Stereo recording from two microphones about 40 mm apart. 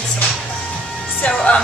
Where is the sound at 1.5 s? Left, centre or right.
Left.